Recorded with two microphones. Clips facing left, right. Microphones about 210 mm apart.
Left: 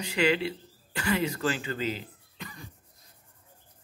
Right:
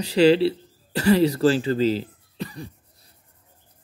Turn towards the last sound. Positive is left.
turn(degrees=-35)  # may be behind; listen again after turning